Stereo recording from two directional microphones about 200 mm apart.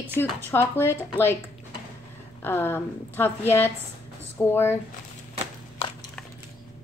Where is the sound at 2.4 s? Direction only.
10° left (ahead or behind).